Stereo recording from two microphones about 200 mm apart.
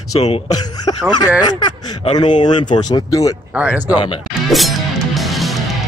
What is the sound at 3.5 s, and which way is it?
Speech, 5° right (ahead or behind).